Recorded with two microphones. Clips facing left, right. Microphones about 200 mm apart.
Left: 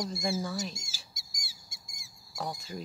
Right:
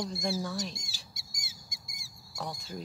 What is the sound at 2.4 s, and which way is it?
Speech, 5° left (ahead or behind).